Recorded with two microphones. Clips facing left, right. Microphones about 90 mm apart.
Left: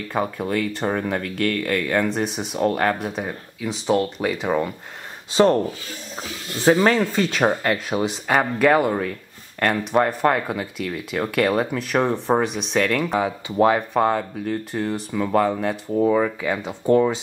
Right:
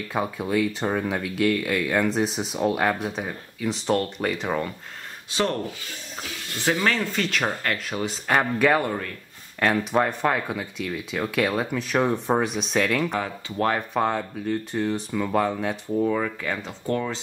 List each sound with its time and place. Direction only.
0.1 s speech: centre (ahead or behind)
5.3 s speech: 30° left (ahead or behind)
8.3 s speech: centre (ahead or behind)
13.2 s speech: 10° left (ahead or behind)
15.9 s speech: 15° left (ahead or behind)